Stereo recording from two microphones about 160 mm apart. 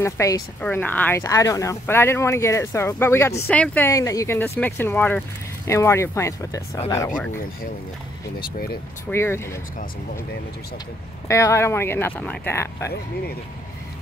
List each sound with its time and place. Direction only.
0.0 s speech: 20° left (ahead or behind)
8.4 s speech: 70° left (ahead or behind)
9.1 s speech: 15° left (ahead or behind)
11.2 s speech: 15° left (ahead or behind)